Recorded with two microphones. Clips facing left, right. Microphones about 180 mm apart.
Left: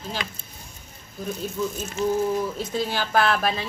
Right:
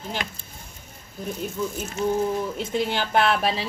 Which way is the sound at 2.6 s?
20° right (ahead or behind).